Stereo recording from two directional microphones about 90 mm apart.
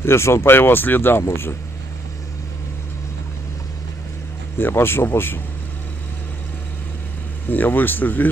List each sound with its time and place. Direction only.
0.0 s speech: 30° left (ahead or behind)
4.6 s speech: 25° left (ahead or behind)
7.4 s speech: 20° left (ahead or behind)